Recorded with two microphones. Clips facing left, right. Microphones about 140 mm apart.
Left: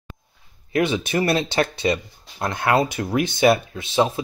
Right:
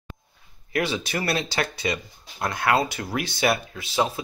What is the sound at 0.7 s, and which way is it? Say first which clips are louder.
Speech: left 5 dB; 20° left (ahead or behind).